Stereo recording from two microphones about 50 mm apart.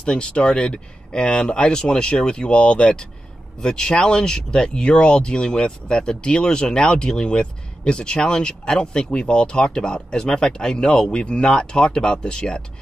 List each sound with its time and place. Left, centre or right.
0.0 s speech: centre